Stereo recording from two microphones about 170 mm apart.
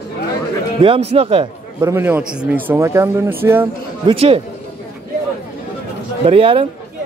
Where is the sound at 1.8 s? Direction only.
15° right (ahead or behind).